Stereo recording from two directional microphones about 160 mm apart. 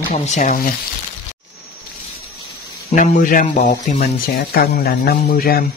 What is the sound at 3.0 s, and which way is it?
Speech, 55° left (ahead or behind).